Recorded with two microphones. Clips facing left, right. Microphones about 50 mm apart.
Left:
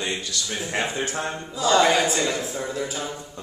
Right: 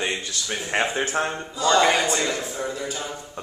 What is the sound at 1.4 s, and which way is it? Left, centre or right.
A man's voice, centre.